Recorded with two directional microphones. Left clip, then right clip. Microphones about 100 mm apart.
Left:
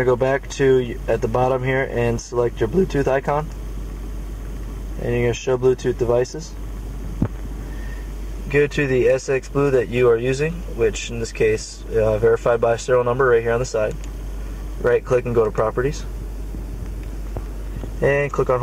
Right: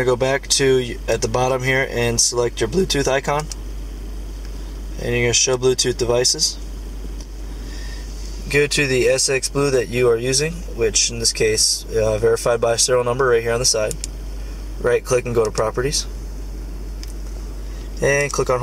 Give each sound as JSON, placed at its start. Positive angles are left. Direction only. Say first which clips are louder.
{"t": 0.0, "sound": "speech", "louder": "even", "side_deg": -15}
{"t": 5.0, "sound": "speech", "louder": "right 3 dB", "side_deg": -15}
{"t": 8.5, "sound": "speech", "louder": "right 1 dB", "side_deg": -10}
{"t": 18.0, "sound": "speech", "louder": "right 1 dB", "side_deg": -15}